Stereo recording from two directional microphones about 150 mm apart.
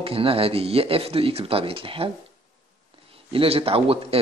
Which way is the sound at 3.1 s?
40° right (ahead or behind).